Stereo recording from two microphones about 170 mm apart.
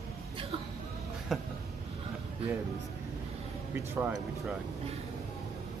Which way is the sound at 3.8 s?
15° right (ahead or behind).